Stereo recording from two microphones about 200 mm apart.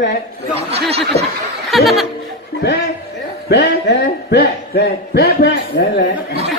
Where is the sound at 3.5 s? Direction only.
55° left (ahead or behind).